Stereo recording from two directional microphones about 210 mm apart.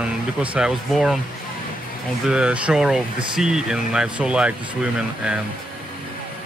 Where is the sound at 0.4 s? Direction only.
5° right (ahead or behind).